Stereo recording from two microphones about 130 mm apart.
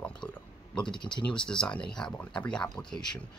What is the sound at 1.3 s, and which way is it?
Speech, 5° left (ahead or behind).